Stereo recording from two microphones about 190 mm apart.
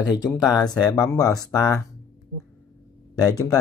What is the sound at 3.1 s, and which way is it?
Speech, 20° left (ahead or behind).